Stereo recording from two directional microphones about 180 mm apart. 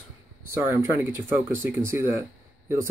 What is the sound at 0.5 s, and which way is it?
Speech, 15° right (ahead or behind).